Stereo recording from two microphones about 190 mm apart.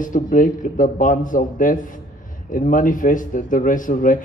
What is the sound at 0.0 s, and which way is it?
A man's voice, 45° left (ahead or behind).